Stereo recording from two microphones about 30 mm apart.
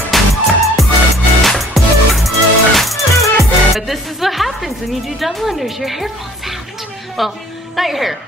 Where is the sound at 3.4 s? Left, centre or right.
Centre.